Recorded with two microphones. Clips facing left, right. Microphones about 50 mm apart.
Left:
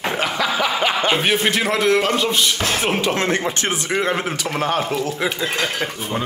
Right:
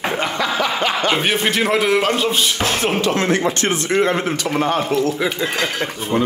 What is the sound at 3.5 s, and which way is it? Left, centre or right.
Speech, centre.